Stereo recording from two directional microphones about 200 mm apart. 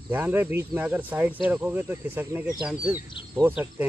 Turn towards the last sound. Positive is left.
turn(degrees=-10)  # may be behind; listen again after turning